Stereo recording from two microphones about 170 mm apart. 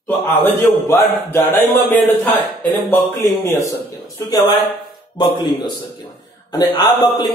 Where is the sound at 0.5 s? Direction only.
15° left (ahead or behind).